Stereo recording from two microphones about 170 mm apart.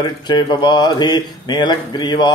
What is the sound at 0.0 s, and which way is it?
Mantra, 25° left (ahead or behind).